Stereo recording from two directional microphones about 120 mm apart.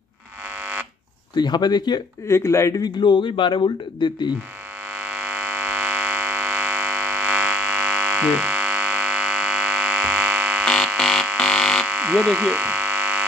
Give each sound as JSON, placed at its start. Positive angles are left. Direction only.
{"t": 0.6, "sound": "fire alarm", "side_deg": -15}
{"t": 1.3, "sound": "speech", "side_deg": 35}
{"t": 2.2, "sound": "speech", "side_deg": 25}
{"t": 2.8, "sound": "a man's voice", "side_deg": 40}
{"t": 4.9, "sound": "fire alarm", "side_deg": -15}
{"t": 10.6, "sound": "frog", "side_deg": 5}
{"t": 11.0, "sound": "a sound", "side_deg": 0}
{"t": 11.8, "sound": "frog", "side_deg": -15}